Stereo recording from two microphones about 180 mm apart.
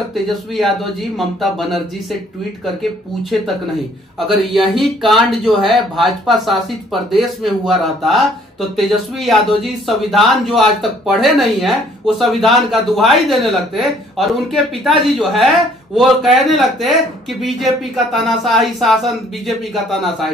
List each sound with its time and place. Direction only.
0.1 s speech: centre (ahead or behind)
4.3 s speech: centre (ahead or behind)